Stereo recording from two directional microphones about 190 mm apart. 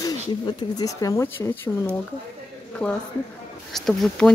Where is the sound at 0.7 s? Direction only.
20° left (ahead or behind).